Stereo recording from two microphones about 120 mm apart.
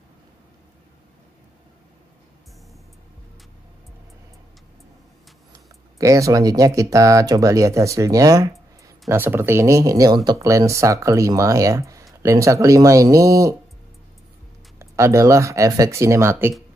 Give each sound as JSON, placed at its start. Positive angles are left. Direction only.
{"t": 5.9, "sound": "speech", "side_deg": -30}
{"t": 14.8, "sound": "speech", "side_deg": -25}